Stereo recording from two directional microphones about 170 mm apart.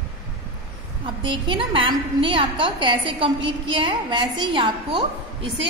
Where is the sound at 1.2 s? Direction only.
30° right (ahead or behind).